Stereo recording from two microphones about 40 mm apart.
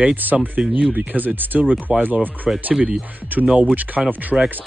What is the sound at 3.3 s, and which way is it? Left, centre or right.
Speech, right.